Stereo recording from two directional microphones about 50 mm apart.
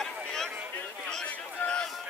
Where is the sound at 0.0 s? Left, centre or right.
Centre.